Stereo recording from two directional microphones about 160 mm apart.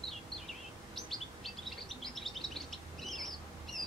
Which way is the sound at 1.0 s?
Centre (ahead or behind).